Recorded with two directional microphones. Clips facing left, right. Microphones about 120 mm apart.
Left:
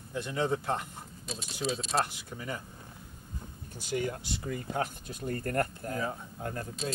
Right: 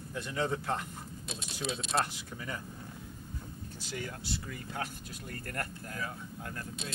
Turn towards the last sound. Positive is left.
turn(degrees=30)  # may be behind; listen again after turning